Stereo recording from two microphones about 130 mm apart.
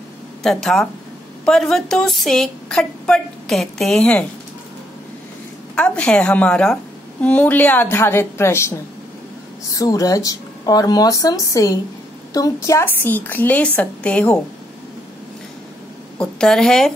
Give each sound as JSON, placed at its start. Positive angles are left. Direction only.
{"t": 0.4, "sound": "a woman's voice", "side_deg": 5}
{"t": 5.8, "sound": "a woman's voice", "side_deg": 10}
{"t": 16.2, "sound": "a woman's voice", "side_deg": 5}